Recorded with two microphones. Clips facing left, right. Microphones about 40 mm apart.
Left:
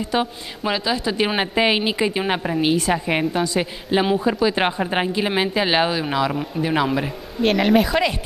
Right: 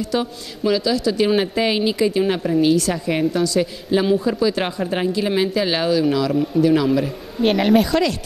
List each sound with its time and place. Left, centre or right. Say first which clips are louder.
0.1 s a woman's voice: even; left
7.4 s speech: right 1 dB; centre
7.9 s a woman's voice: right 1 dB; left